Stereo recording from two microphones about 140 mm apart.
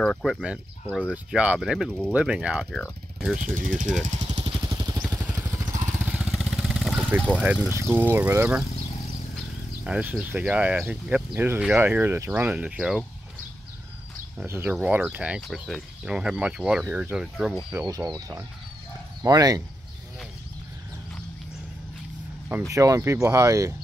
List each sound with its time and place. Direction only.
0.0 s speech: 5° left (ahead or behind)
3.3 s speech: 75° right (ahead or behind)
4.0 s speech: 60° right (ahead or behind)
4.4 s vehicle: 35° right (ahead or behind)
5.2 s vehicle: 20° right (ahead or behind)
6.1 s vehicle: centre (ahead or behind)
7.3 s speech: 10° left (ahead or behind)
7.7 s speech: 15° right (ahead or behind)
9.8 s speech: 10° right (ahead or behind)
14.4 s speech: 15° right (ahead or behind)
17.8 s speech: 25° right (ahead or behind)
22.7 s speech: 20° right (ahead or behind)